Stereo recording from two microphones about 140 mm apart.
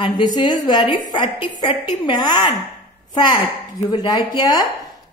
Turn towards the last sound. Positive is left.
turn(degrees=30)  # may be behind; listen again after turning